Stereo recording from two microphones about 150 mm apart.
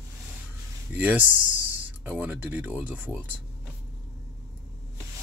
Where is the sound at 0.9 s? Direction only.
10° right (ahead or behind).